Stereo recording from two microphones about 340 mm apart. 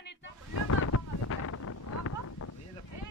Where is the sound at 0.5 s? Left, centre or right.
Left.